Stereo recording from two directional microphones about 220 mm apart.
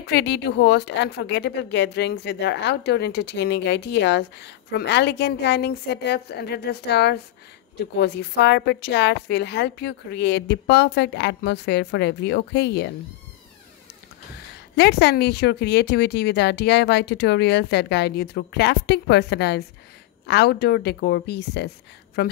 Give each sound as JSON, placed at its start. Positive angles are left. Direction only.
{"t": 0.0, "sound": "speech", "side_deg": 50}
{"t": 14.8, "sound": "speech", "side_deg": 50}